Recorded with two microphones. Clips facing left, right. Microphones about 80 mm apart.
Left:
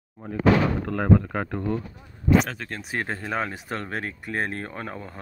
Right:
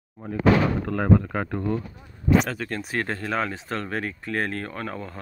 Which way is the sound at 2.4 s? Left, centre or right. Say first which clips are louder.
Right 4 dB; centre.